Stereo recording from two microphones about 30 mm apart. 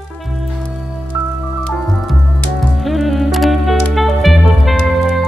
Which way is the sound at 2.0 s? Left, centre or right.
Centre.